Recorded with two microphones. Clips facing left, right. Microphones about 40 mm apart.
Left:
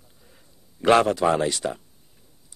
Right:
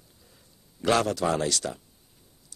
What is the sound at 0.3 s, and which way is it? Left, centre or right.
A man's voice, left.